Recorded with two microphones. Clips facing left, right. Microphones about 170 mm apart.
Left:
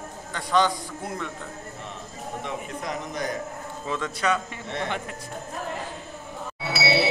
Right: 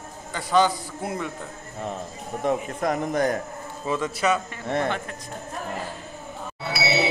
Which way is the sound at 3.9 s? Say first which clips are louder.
Right 3 dB; 10° right (ahead or behind).